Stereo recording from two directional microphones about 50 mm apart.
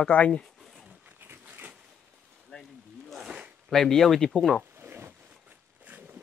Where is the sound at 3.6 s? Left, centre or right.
Centre.